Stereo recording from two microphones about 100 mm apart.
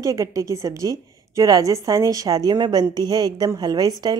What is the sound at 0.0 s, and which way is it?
A woman's voice, 35° right (ahead or behind).